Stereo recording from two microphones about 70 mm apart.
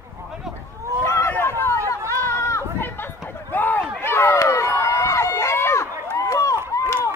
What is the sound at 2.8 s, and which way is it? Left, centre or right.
Chatter, left.